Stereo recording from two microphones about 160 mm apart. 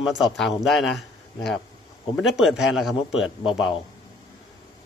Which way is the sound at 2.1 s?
Centre (ahead or behind).